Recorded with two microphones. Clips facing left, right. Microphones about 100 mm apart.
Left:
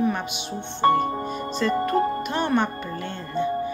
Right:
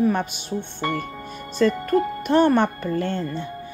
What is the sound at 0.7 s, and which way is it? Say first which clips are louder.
Speech: left 10 dB; 35° left (ahead or behind).